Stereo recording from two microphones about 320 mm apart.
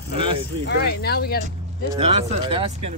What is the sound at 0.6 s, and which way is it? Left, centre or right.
Speech, left.